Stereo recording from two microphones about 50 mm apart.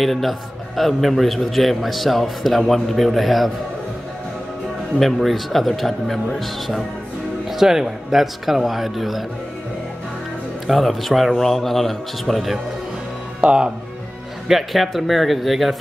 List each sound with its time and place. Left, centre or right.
0.0 s a man's voice: centre
4.9 s a man's voice: centre
7.4 s a man's voice: centre
10.7 s a man's voice: centre
13.4 s speech: centre
14.5 s a man's voice: centre